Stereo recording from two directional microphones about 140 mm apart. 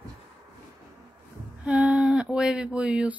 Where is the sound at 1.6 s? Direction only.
10° right (ahead or behind).